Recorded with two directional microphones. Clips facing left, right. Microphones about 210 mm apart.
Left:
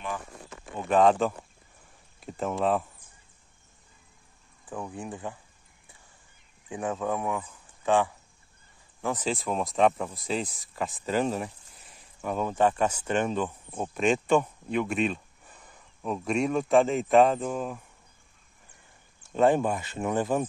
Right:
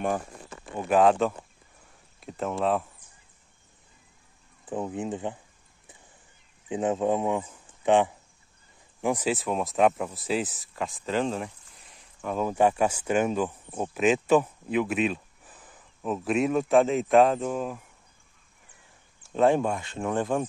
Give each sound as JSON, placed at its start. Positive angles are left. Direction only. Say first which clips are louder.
{"t": 0.7, "sound": "speech", "louder": "right 1 dB", "side_deg": -5}
{"t": 4.6, "sound": "speech", "louder": "right 6 dB", "side_deg": -20}
{"t": 6.7, "sound": "speech", "louder": "right 5 dB", "side_deg": -20}
{"t": 9.0, "sound": "speech", "louder": "right 3 dB", "side_deg": -10}
{"t": 19.3, "sound": "speech", "louder": "even", "side_deg": 0}